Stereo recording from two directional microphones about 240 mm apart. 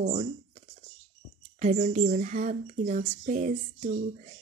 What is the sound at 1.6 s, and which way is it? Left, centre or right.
Speech, right.